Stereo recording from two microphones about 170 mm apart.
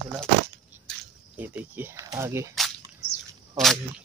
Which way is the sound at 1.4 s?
10° right (ahead or behind).